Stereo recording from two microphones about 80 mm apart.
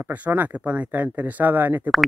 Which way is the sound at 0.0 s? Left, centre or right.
Centre.